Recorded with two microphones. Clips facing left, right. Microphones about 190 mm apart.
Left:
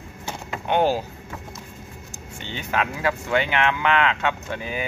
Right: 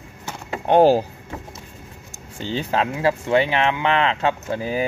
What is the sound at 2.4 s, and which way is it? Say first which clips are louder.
Speech: right 4 dB; 30° right (ahead or behind).